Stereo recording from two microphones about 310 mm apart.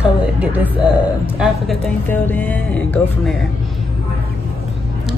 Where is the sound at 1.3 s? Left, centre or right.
Centre.